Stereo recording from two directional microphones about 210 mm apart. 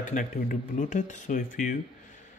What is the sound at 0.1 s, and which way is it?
Speech, 40° left (ahead or behind).